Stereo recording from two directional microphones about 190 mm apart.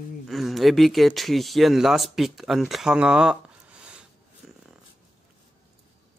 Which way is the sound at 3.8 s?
5° right (ahead or behind).